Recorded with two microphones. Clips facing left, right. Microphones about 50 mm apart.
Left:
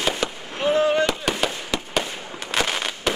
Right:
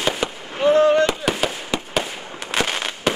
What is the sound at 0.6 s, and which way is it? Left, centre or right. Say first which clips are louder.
Fireworks: right 5 dB; centre.